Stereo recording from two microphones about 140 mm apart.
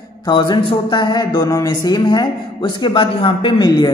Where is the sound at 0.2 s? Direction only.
35° left (ahead or behind).